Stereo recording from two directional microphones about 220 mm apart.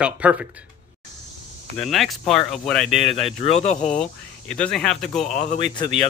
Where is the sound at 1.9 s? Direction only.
Centre (ahead or behind).